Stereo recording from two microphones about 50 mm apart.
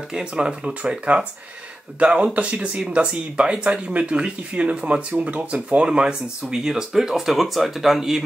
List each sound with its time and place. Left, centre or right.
0.1 s speech: centre